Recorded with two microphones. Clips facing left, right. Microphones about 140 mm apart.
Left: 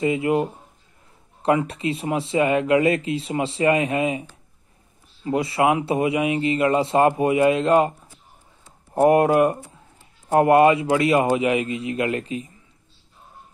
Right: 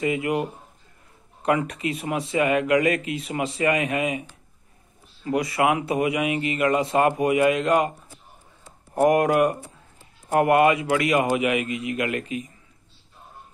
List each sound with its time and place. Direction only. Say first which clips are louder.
0.0 s speech: left 3 dB; 25° left (ahead or behind)
8.9 s speech: left 3 dB; 25° left (ahead or behind)